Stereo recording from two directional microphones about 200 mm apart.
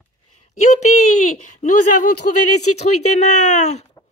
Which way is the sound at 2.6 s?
90° left.